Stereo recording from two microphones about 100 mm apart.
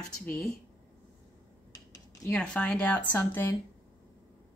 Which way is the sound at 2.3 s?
10° left (ahead or behind).